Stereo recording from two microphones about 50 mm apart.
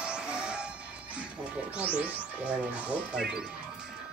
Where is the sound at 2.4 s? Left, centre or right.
Right.